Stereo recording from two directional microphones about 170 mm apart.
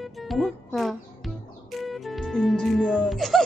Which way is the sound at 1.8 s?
Centre (ahead or behind).